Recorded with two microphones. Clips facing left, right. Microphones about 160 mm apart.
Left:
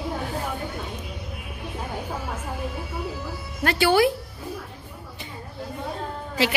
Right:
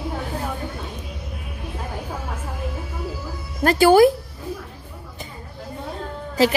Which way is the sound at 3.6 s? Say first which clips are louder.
Right 6 dB; 45° right (ahead or behind).